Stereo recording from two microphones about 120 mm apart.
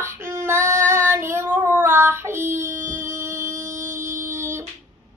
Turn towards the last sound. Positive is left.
turn(degrees=-20)  # may be behind; listen again after turning